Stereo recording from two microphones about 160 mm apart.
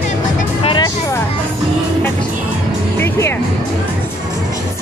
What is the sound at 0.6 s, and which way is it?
Music, 30° left (ahead or behind).